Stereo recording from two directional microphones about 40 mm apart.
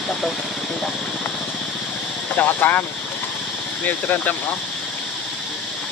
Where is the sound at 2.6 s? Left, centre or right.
Left.